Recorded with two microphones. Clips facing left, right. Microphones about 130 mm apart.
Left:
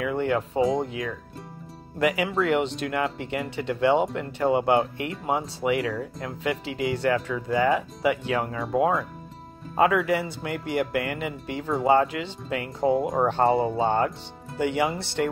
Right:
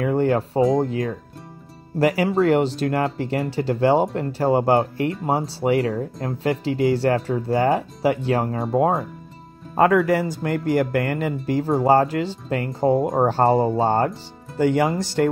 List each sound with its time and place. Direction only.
0.0 s speech: 35° right (ahead or behind)